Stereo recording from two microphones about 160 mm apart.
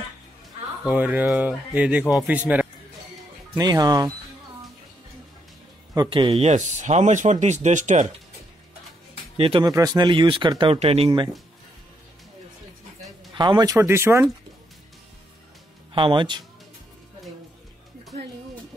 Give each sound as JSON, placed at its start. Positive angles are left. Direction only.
{"t": 0.8, "sound": "speech", "side_deg": -10}
{"t": 3.5, "sound": "speech", "side_deg": -25}
{"t": 5.9, "sound": "speech", "side_deg": -35}
{"t": 9.4, "sound": "speech", "side_deg": -35}
{"t": 13.3, "sound": "speech", "side_deg": -25}
{"t": 15.9, "sound": "speech", "side_deg": -30}